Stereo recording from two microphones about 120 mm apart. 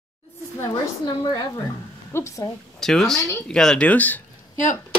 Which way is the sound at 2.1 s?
25° left (ahead or behind).